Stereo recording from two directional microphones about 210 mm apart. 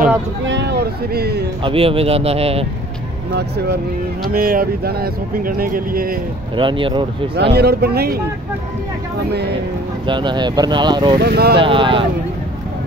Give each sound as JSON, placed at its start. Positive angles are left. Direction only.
{"t": 0.5, "sound": "speech", "side_deg": -55}
{"t": 1.6, "sound": "speech", "side_deg": -25}
{"t": 3.3, "sound": "speech", "side_deg": -50}
{"t": 6.5, "sound": "speech", "side_deg": -25}
{"t": 7.3, "sound": "speech", "side_deg": -50}
{"t": 10.0, "sound": "speech", "side_deg": -20}
{"t": 11.2, "sound": "speech", "side_deg": -50}
{"t": 11.5, "sound": "speech", "side_deg": -25}